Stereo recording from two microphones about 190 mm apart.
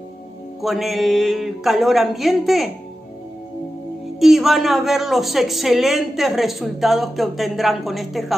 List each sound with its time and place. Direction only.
0.6 s speech: centre (ahead or behind)
4.2 s speech: centre (ahead or behind)